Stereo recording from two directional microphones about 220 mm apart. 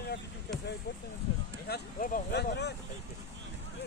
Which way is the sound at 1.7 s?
40° left (ahead or behind).